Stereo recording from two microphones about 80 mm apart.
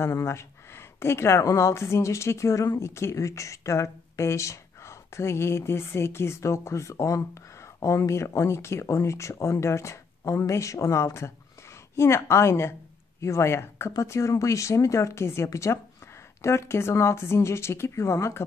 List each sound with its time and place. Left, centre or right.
0.0 s speech: left